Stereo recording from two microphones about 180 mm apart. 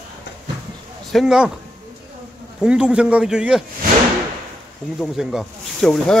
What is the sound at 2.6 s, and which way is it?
Speech, 5° right (ahead or behind).